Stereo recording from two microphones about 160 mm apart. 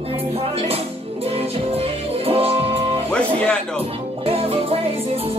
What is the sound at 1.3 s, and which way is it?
Music, 35° right (ahead or behind).